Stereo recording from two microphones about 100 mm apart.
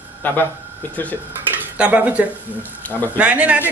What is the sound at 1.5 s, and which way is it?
Speech, 15° right (ahead or behind).